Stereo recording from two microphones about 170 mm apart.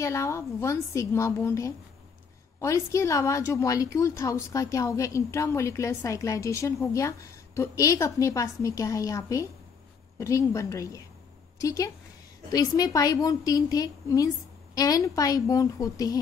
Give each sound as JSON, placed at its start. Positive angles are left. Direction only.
{"t": 0.0, "sound": "a woman's voice", "side_deg": 15}